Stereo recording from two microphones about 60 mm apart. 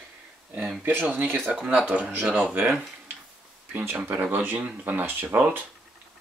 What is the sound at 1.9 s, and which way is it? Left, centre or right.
Speech, right.